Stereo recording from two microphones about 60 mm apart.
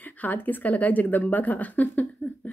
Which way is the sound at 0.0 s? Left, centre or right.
Left.